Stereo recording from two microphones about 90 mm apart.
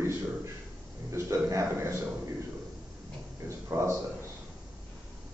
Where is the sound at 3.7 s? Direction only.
30° right (ahead or behind).